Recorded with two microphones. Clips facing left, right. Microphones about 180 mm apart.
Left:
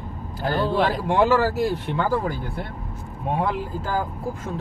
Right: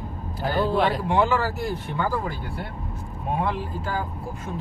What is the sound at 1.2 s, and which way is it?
Speech, 85° left.